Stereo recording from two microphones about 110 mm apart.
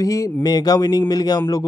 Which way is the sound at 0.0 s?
30° left (ahead or behind).